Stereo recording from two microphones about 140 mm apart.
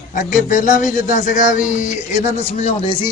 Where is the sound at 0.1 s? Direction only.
70° left (ahead or behind).